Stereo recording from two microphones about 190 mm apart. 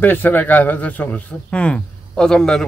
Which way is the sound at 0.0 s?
10° left (ahead or behind).